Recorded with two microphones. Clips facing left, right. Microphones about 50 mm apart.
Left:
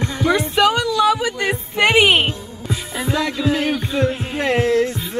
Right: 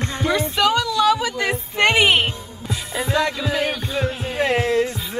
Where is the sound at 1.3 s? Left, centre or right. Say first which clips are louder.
Left 1 dB; centre.